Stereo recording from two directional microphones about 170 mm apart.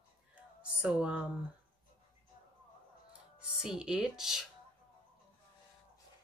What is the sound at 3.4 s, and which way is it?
Speech, 5° right (ahead or behind).